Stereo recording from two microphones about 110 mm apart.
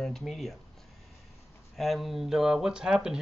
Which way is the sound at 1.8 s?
Centre (ahead or behind).